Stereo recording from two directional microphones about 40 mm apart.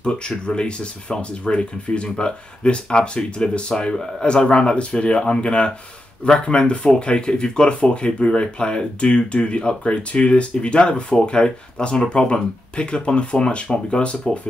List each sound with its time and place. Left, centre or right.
0.0 s speech: left